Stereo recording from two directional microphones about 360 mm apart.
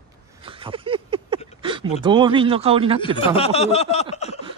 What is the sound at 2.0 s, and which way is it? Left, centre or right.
A man's voice, centre.